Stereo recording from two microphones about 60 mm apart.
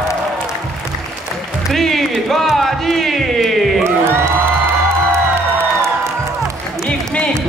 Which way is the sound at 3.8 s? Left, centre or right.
Right.